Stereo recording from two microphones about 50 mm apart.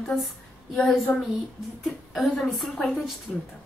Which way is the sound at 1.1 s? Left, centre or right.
Left.